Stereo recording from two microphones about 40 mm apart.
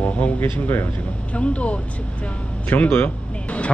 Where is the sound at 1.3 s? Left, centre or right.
Left.